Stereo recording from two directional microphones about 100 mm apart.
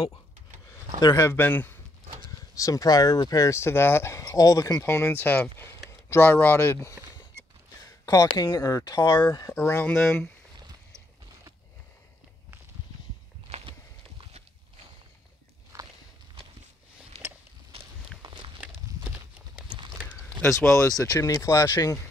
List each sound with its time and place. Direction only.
1.0 s speech: 30° left (ahead or behind)
1.3 s speech: 20° left (ahead or behind)
2.5 s speech: 35° left (ahead or behind)
4.8 s speech: 25° left (ahead or behind)
8.0 s speech: 35° left (ahead or behind)
9.5 s speech: 25° left (ahead or behind)
13.5 s a sound: 75° right (ahead or behind)
15.7 s walk: 35° right (ahead or behind)
17.1 s a sound: 90° right
18.2 s walk: 50° right (ahead or behind)
20.4 s speech: 30° left (ahead or behind)